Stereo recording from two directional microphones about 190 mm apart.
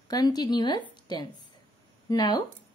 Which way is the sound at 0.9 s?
20° left (ahead or behind).